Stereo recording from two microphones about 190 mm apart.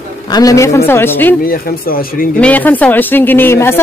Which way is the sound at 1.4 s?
50° left (ahead or behind).